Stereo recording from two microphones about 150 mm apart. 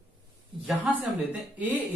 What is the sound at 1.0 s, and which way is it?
Speech, 10° right (ahead or behind).